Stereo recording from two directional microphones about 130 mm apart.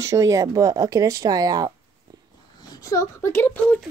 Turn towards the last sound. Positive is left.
turn(degrees=15)  # may be behind; listen again after turning